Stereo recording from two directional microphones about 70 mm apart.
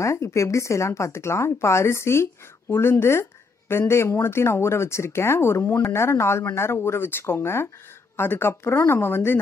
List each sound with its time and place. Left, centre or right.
0.0 s speech: left